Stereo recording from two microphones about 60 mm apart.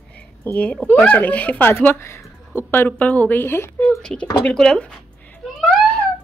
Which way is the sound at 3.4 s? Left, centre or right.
Left.